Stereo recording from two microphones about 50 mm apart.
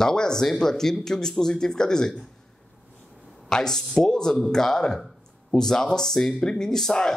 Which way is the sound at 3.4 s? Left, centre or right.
Centre.